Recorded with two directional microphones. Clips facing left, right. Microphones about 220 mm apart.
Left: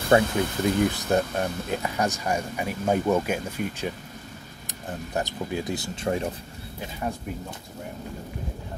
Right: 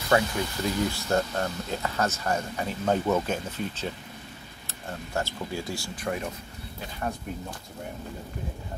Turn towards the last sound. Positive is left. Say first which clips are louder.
# left 2 dB
turn(degrees=15)  # may be behind; listen again after turning